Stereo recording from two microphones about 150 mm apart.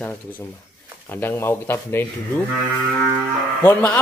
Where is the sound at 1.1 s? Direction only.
15° left (ahead or behind).